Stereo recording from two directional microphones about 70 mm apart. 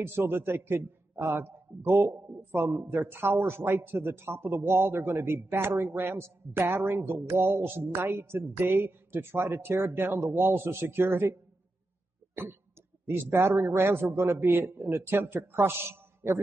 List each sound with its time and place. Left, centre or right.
0.0 s a man's voice: right
13.0 s a man's voice: right